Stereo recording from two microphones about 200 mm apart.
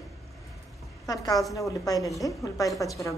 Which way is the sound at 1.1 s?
20° left (ahead or behind).